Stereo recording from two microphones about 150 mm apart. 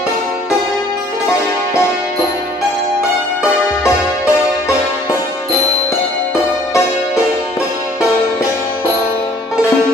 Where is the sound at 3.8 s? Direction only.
20° left (ahead or behind).